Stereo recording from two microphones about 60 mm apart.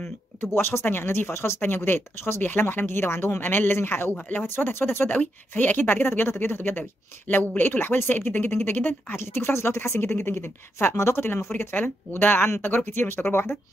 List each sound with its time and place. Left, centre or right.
0.6 s speech: left
11.0 s speech: left
11.5 s speech: left